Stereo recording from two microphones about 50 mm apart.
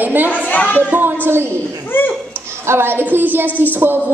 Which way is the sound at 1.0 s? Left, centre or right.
Right.